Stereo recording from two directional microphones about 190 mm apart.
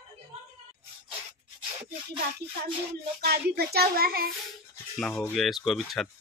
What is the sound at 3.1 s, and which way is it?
A child's voice, 55° right (ahead or behind).